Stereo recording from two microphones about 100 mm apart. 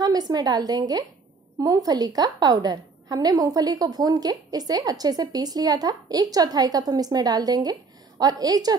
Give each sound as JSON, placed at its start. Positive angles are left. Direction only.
{"t": 0.0, "sound": "a woman's voice", "side_deg": -40}